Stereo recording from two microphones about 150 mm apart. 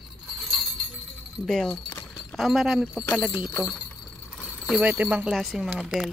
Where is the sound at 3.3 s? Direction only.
25° left (ahead or behind).